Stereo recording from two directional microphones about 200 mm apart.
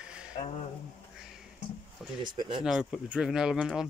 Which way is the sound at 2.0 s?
Centre (ahead or behind).